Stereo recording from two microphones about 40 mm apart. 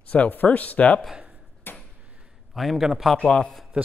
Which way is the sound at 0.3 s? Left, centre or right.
Left.